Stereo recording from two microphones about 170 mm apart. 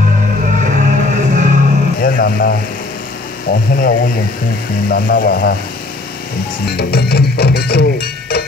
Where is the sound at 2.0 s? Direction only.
55° left (ahead or behind).